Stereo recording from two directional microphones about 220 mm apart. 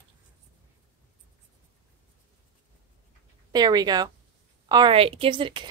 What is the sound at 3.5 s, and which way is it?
Speech, 20° right (ahead or behind).